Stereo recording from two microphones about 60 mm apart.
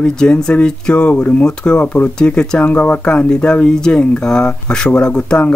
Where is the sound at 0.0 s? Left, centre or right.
Centre.